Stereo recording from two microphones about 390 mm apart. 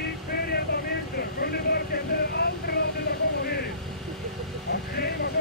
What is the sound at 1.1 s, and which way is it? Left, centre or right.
Vehicle, left.